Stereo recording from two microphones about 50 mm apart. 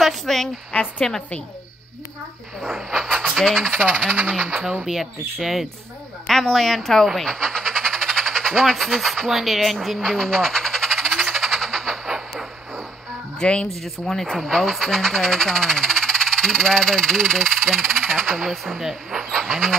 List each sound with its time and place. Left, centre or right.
0.0 s speech: centre
0.7 s a woman's voice: left
2.6 s speech: centre
3.1 s frog: centre
3.3 s speech: centre
5.4 s speech: centre
7.2 s a sound: centre
9.3 s speech: centre
10.0 s frog: centre
13.4 s speech: centre
13.8 s speech: centre
18.0 s a sound: centre
18.4 s speech: centre
19.3 s vehicle: centre